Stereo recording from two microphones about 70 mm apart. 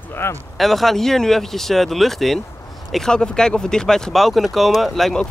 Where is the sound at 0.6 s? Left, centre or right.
Centre.